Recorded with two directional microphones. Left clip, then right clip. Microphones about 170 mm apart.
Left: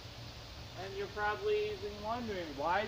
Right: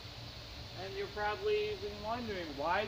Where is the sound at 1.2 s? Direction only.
5° left (ahead or behind).